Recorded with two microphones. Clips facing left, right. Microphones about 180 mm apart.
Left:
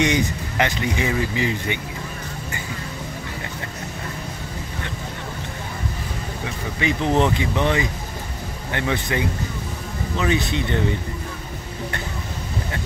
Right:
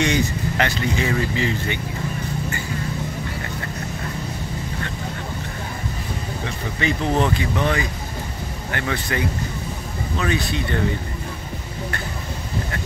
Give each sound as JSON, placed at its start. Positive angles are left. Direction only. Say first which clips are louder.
{"t": 0.0, "sound": "speech", "louder": "even", "side_deg": 15}
{"t": 6.4, "sound": "speech", "louder": "even", "side_deg": 15}